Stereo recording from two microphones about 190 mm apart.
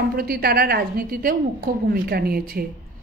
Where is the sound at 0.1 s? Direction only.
50° right (ahead or behind).